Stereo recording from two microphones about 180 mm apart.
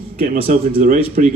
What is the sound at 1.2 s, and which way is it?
Speech, 50° right (ahead or behind).